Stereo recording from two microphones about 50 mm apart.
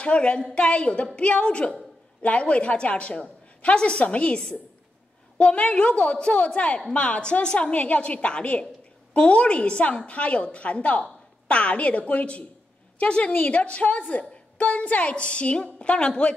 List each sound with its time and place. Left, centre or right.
0.0 s a woman's voice: left